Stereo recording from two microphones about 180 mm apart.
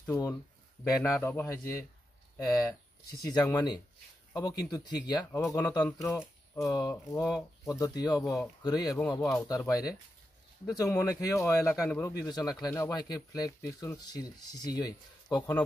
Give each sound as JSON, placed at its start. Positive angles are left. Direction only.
{"t": 0.0, "sound": "a man's voice", "side_deg": 20}